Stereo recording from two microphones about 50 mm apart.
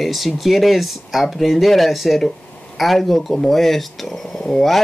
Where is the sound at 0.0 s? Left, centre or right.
Centre.